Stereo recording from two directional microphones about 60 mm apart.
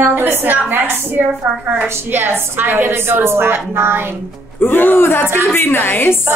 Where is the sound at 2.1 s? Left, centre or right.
Right.